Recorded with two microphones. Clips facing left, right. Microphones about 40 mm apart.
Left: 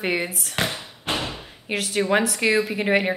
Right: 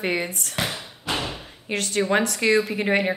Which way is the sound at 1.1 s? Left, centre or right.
Left.